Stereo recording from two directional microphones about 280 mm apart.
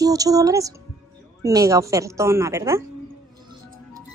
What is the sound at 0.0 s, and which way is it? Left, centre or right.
A woman's voice, centre.